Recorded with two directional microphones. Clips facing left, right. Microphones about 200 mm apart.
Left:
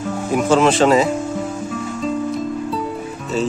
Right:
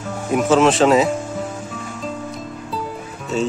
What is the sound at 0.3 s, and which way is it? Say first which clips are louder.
Speech: even; centre (ahead or behind).